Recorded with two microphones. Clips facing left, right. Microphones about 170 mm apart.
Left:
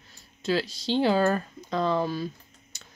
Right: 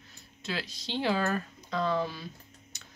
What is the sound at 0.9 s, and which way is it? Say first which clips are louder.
Speech: left 7 dB; 35° left (ahead or behind).